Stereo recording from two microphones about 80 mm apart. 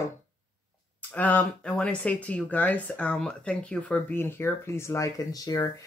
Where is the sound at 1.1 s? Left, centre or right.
Centre.